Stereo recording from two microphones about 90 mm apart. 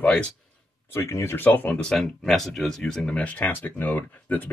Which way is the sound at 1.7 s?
5° left (ahead or behind).